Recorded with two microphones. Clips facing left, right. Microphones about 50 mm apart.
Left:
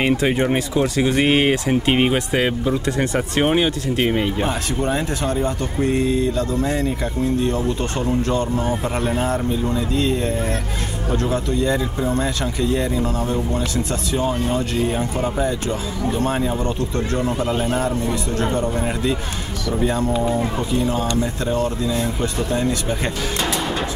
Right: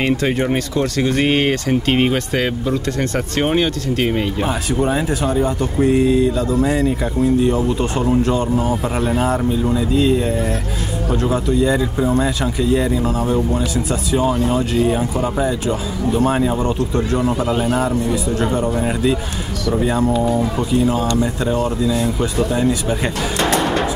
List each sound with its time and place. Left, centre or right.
0.0 s speech: centre
4.7 s speech: centre
7.4 s speech: centre
15.3 s speech: centre
20.8 s speech: centre
23.4 s music: right